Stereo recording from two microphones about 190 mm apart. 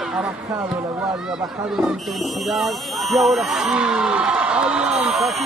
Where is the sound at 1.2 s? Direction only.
5° right (ahead or behind).